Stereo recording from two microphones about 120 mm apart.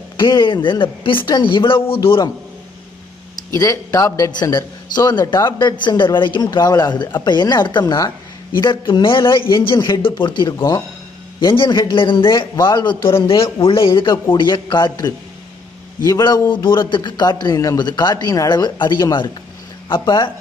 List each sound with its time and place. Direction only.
0.2 s a man's voice: 40° left (ahead or behind)
3.3 s a man's voice: 30° left (ahead or behind)